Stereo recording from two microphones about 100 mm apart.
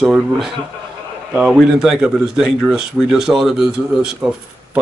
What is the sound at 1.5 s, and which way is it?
A man's voice, 5° right (ahead or behind).